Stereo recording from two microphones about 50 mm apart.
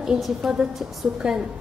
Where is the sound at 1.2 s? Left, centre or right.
Centre.